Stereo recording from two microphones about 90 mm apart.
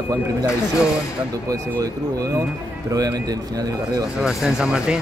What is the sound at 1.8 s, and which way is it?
Speech, 40° right (ahead or behind).